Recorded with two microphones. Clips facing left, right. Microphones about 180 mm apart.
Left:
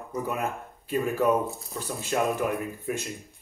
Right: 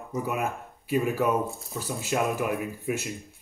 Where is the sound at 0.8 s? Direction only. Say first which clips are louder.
Left 1 dB; 10° right (ahead or behind).